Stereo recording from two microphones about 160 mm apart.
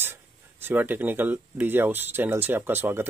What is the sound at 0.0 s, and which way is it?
Speech, 15° right (ahead or behind).